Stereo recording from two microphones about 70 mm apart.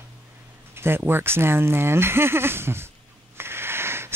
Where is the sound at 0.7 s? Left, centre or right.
Right.